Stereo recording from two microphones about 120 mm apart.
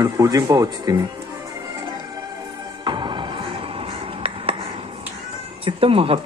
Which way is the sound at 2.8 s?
40° right (ahead or behind).